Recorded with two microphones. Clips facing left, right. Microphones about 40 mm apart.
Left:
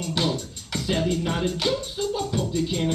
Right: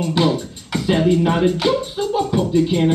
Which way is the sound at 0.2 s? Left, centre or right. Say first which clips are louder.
Right 7 dB; right.